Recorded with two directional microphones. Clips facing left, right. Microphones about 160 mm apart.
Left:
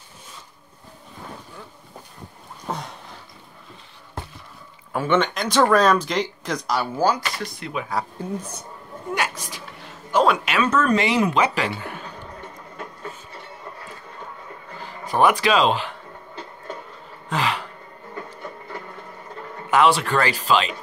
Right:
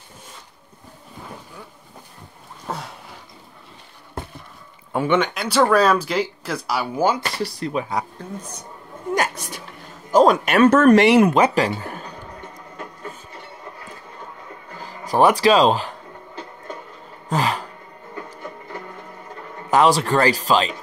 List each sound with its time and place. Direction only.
2.6 s a sound: 5° right (ahead or behind)
4.9 s speech: 15° right (ahead or behind)
7.0 s speech: 25° right (ahead or behind)
10.1 s speech: 40° right (ahead or behind); by 11.2 s 65° right (ahead or behind)
11.2 s speech: 45° right (ahead or behind)
14.8 s speech: 40° right (ahead or behind)
17.3 s music: 40° right (ahead or behind)
19.7 s speech: 35° right (ahead or behind)